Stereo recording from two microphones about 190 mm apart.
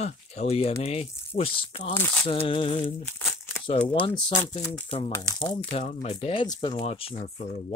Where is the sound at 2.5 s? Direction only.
30° left (ahead or behind).